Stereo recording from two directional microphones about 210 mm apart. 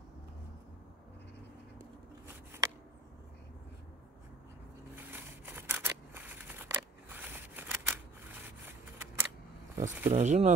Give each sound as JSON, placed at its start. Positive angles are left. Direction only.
{"t": 4.9, "sound": "scissors", "side_deg": -10}
{"t": 9.8, "sound": "speech", "side_deg": -10}
{"t": 10.1, "sound": "speech", "side_deg": -35}